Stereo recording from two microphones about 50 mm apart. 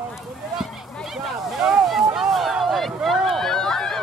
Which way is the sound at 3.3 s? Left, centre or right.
Centre.